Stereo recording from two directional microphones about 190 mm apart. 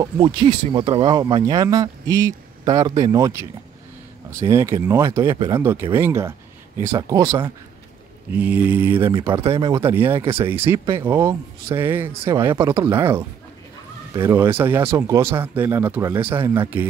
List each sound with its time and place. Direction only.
0.0 s speech: 25° right (ahead or behind)
9.1 s speech: 25° right (ahead or behind)